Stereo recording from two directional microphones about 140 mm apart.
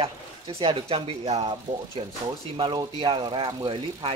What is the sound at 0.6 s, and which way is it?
Speech, 35° right (ahead or behind).